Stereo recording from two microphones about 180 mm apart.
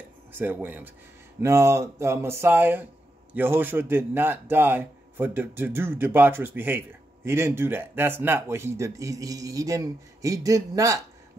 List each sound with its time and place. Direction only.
0.3 s a man's voice: 10° right (ahead or behind)